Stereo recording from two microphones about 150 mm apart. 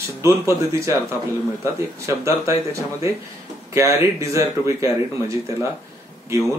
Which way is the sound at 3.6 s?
20° right (ahead or behind).